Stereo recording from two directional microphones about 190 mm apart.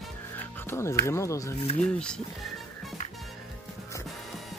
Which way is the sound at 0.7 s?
15° left (ahead or behind).